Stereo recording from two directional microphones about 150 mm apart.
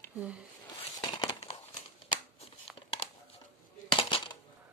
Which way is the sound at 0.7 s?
30° left (ahead or behind).